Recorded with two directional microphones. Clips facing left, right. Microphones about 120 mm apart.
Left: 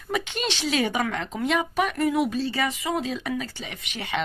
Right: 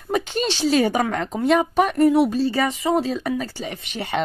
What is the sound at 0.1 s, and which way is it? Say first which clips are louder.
Speech: right 5 dB; 35° right (ahead or behind).